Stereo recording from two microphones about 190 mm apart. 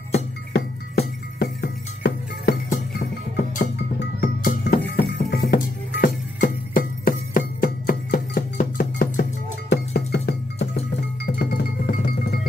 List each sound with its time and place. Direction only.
0.5 s music: 60° left (ahead or behind)
4.2 s music: 50° left (ahead or behind)